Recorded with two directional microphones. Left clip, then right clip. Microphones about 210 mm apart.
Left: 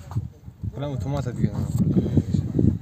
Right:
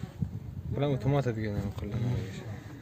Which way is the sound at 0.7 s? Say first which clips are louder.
Right 1 dB; 10° left (ahead or behind).